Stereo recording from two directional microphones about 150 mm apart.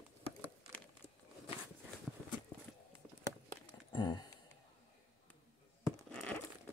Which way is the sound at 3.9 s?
30° left (ahead or behind).